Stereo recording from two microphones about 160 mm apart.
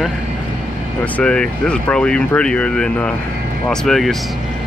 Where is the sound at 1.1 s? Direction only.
5° left (ahead or behind).